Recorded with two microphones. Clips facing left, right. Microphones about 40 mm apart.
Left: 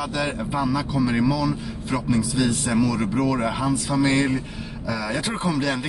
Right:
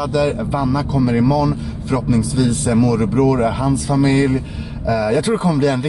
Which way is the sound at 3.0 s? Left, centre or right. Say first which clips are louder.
Right 7 dB; centre.